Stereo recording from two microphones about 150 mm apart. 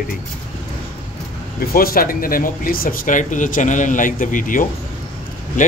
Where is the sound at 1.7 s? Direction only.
80° left.